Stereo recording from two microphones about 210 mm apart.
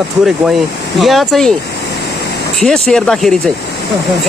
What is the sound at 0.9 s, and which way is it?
Speech, centre (ahead or behind).